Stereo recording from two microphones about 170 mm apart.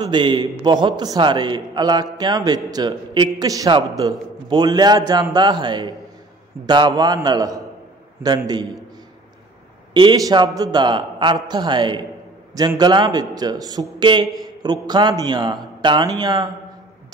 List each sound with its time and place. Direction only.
0.0 s a man's voice: 30° right (ahead or behind)
9.9 s a man's voice: 25° right (ahead or behind)